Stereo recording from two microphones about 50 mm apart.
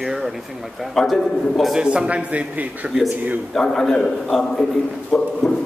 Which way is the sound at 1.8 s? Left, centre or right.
Centre.